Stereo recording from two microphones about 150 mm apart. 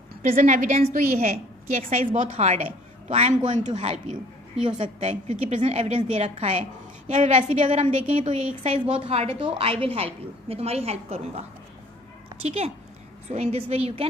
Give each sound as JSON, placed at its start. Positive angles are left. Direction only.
{"t": 0.2, "sound": "a woman's voice", "side_deg": -60}
{"t": 2.2, "sound": "a woman's voice", "side_deg": -50}
{"t": 3.7, "sound": "a woman's voice", "side_deg": -40}
{"t": 7.1, "sound": "a woman's voice", "side_deg": -55}
{"t": 12.4, "sound": "a woman's voice", "side_deg": -45}